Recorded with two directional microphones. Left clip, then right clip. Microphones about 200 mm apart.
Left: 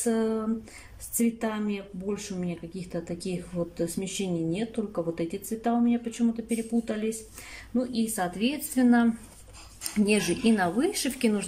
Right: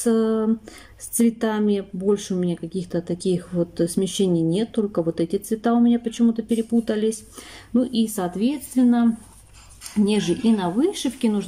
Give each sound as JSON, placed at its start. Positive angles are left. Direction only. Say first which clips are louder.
{"t": 0.0, "sound": "speech", "louder": "right 7 dB", "side_deg": -25}
{"t": 10.0, "sound": "speech", "louder": "right 3 dB", "side_deg": -15}